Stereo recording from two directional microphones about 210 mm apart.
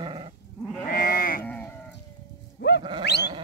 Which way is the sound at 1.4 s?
10° left (ahead or behind).